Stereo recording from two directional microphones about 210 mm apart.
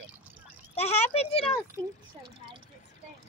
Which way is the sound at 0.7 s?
30° left (ahead or behind).